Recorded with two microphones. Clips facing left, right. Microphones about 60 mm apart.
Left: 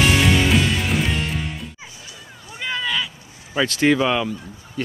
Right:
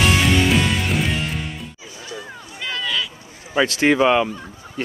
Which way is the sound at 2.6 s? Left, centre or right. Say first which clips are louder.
Left 1 dB; centre.